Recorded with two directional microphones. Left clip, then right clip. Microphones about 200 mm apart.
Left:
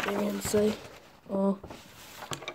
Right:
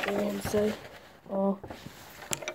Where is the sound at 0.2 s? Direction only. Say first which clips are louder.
Left 1 dB; 15° left (ahead or behind).